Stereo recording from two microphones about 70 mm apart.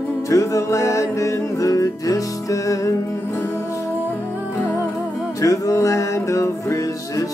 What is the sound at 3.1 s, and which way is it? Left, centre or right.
Music, left.